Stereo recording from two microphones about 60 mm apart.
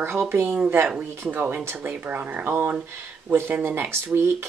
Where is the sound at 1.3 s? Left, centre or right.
Right.